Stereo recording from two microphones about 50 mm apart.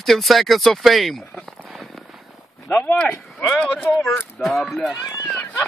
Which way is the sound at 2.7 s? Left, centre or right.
Left.